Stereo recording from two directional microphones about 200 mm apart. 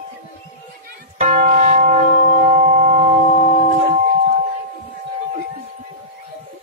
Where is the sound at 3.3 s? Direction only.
35° left (ahead or behind).